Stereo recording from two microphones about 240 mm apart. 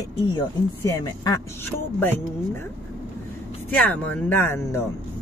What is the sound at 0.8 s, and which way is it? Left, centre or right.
Speech, centre.